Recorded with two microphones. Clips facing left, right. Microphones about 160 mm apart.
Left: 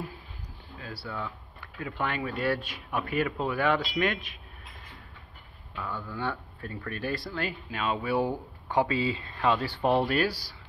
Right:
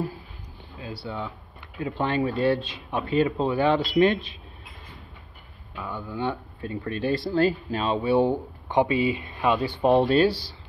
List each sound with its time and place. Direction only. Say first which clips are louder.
0.7 s speech: right 4 dB; 20° right (ahead or behind)
5.8 s speech: right 4 dB; 15° right (ahead or behind)